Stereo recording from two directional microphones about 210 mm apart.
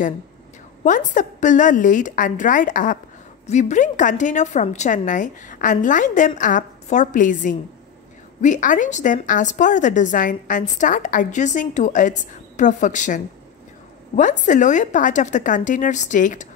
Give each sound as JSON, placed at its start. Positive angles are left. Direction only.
{"t": 0.8, "sound": "a woman's voice", "side_deg": 35}